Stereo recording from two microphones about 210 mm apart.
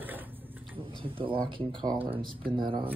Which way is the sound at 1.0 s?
25° right (ahead or behind).